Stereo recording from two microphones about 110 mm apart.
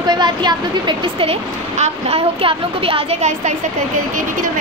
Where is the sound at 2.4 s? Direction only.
55° right (ahead or behind); by 3.5 s 80° right.